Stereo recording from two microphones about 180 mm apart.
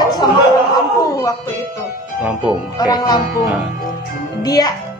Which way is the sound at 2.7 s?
20° left (ahead or behind).